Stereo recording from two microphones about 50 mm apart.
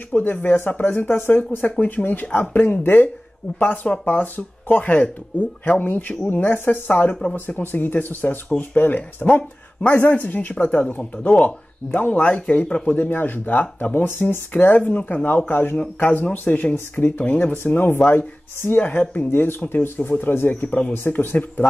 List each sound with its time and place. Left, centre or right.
0.1 s speech: left
12.9 s speech: left
17.3 s speech: left